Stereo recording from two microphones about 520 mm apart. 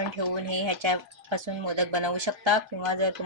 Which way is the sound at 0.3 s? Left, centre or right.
Right.